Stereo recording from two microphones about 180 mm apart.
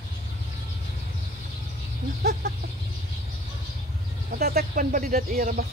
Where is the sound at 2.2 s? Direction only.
65° right (ahead or behind).